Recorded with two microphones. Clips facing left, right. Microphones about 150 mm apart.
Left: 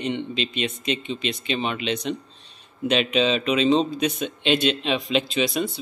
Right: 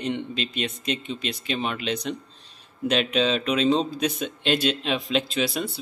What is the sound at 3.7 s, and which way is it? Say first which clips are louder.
A man's voice: left 2 dB; 5° right (ahead or behind).